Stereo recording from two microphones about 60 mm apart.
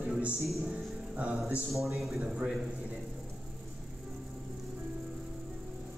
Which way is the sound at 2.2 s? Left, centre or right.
Right.